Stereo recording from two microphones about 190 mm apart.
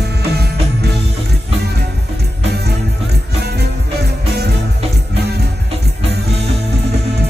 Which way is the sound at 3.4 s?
60° right (ahead or behind).